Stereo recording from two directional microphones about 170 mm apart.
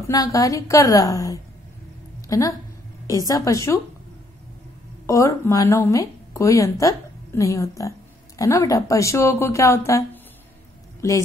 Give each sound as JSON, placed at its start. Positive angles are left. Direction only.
{"t": 0.0, "sound": "a woman's voice", "side_deg": 20}
{"t": 5.0, "sound": "speech", "side_deg": 15}